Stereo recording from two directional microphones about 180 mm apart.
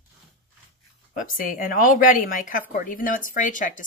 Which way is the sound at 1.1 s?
50° left (ahead or behind).